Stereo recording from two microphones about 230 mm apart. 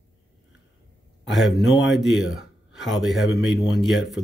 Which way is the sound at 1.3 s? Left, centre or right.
Centre.